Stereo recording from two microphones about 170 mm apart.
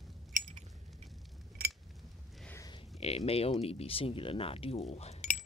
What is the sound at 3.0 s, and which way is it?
Speech, 35° left (ahead or behind).